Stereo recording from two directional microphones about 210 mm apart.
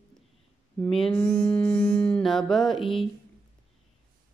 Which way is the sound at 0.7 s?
5° left (ahead or behind).